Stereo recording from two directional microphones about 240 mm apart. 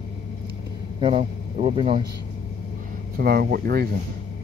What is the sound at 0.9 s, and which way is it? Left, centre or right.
A man's voice, right.